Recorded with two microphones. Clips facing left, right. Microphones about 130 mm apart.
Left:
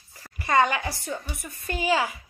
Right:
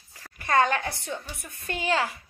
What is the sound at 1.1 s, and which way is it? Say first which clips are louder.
A woman's voice: left 2 dB; 5° left (ahead or behind).